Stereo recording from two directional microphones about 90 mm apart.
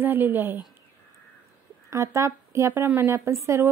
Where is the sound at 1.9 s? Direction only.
35° right (ahead or behind).